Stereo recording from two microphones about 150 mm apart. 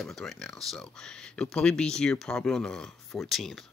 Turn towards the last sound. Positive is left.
turn(degrees=0)  # may be behind; listen again after turning